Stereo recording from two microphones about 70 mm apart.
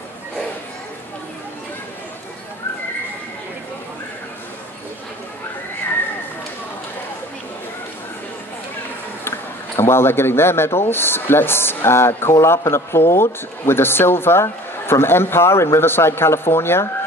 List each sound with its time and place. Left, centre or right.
9.2 s a man's voice: left